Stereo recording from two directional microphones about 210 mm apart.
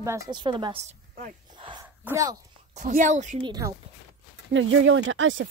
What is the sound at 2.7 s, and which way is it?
Speech, 35° right (ahead or behind).